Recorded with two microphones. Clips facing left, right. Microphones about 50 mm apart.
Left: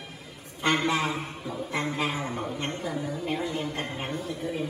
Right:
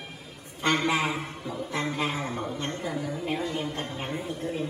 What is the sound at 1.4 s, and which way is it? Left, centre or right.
Speech, centre.